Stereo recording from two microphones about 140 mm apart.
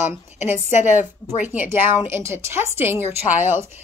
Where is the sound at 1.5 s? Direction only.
15° right (ahead or behind).